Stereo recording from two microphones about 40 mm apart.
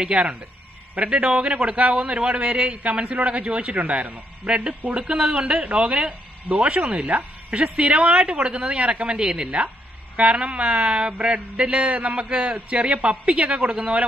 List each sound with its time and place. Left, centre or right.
0.1 s speech: right
3.7 s speech: right